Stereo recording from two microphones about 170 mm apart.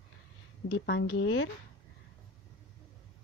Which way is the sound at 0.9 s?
90° left.